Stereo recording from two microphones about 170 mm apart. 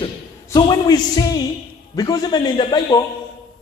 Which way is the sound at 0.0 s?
25° left (ahead or behind).